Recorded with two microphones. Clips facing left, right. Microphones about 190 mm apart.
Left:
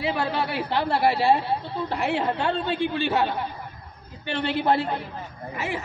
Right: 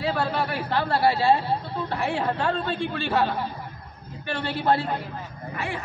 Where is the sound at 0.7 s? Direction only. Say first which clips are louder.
Even; 20° left (ahead or behind).